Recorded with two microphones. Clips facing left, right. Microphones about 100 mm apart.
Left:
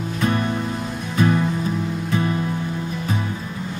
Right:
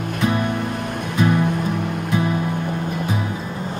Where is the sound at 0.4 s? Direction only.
60° right (ahead or behind).